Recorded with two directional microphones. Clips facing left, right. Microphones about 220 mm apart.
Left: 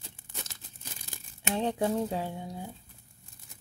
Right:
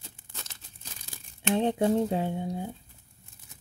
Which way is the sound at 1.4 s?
20° right (ahead or behind).